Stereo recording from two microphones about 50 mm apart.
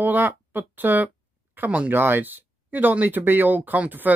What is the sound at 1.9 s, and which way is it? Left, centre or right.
Speech, right.